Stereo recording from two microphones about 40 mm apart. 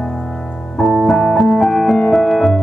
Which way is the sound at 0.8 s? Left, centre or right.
Centre.